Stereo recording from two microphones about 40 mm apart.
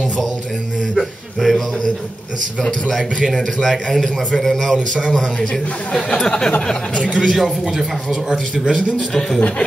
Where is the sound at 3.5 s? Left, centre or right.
Centre.